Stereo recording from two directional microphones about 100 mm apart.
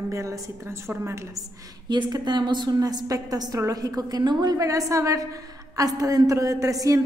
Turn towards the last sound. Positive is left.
turn(degrees=-35)  # may be behind; listen again after turning